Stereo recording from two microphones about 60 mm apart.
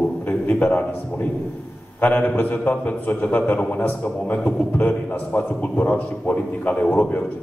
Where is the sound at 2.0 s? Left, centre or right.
Left.